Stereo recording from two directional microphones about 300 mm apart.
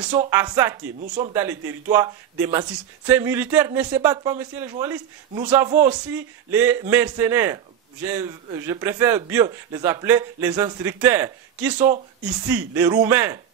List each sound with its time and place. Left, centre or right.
0.3 s speech: centre
1.0 s a man's voice: right
1.3 s speech: centre